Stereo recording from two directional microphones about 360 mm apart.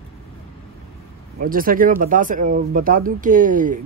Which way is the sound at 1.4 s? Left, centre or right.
Right.